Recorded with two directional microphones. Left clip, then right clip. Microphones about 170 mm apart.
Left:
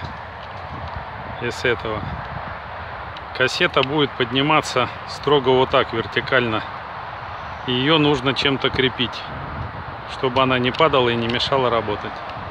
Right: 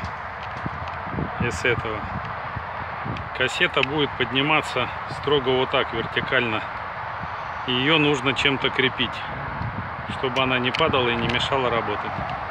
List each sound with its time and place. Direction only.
1.4 s speech: 10° left (ahead or behind)
3.3 s speech: 25° left (ahead or behind)
7.6 s speech: 20° left (ahead or behind)
10.2 s speech: 30° left (ahead or behind)